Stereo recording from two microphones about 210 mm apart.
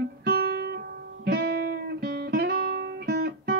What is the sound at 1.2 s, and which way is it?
Music, 50° right (ahead or behind).